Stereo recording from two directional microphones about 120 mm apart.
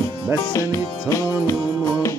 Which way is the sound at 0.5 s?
25° left (ahead or behind).